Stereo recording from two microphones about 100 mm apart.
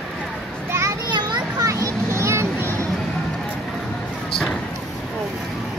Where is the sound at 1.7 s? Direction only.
30° right (ahead or behind).